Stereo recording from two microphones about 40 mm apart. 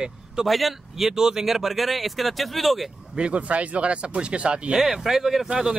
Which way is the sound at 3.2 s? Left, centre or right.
Right.